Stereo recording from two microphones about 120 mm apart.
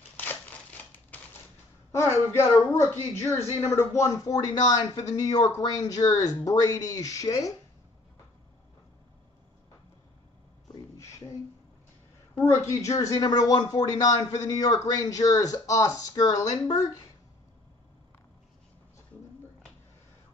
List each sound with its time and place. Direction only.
0.2 s crumpling: 15° left (ahead or behind)
1.9 s speech: 20° left (ahead or behind)
12.4 s speech: 25° left (ahead or behind)